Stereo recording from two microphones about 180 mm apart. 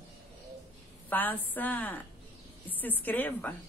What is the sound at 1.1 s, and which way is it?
Speech, 10° left (ahead or behind).